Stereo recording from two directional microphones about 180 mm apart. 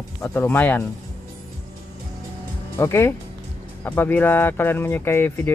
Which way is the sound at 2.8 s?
15° left (ahead or behind).